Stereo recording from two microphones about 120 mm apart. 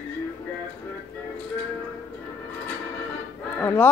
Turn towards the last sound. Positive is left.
turn(degrees=15)  # may be behind; listen again after turning